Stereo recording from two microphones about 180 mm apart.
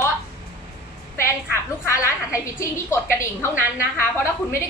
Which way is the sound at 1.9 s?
15° left (ahead or behind).